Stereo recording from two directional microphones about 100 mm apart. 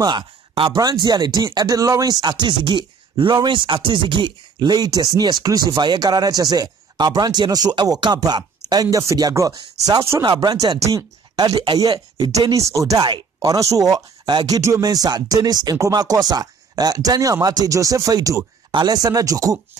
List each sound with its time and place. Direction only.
0.0 s speech: 50° right (ahead or behind); by 10.2 s 35° right (ahead or behind)
10.2 s speech: 45° right (ahead or behind)
12.3 s speech: 35° right (ahead or behind)
18.7 s speech: 45° right (ahead or behind)